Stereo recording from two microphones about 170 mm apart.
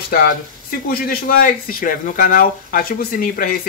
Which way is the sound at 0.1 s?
60° left (ahead or behind).